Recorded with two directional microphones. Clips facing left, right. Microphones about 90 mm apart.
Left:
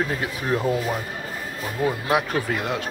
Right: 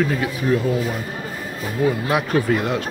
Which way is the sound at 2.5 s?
10° left (ahead or behind).